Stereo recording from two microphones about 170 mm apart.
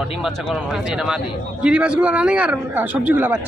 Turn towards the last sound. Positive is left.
turn(degrees=-10)  # may be behind; listen again after turning